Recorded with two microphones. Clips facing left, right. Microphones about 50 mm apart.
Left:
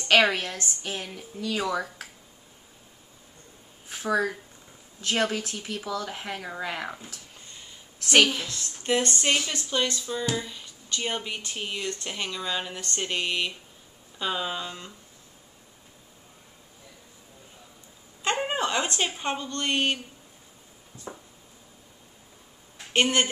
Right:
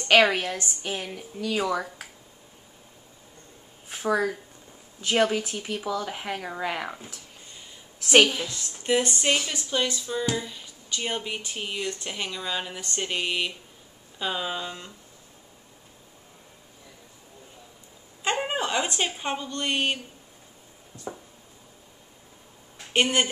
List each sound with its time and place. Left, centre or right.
0.0 s a woman's voice: centre
0.3 s a woman's voice: centre
3.9 s a woman's voice: centre
18.2 s speech: centre
22.9 s a woman's voice: centre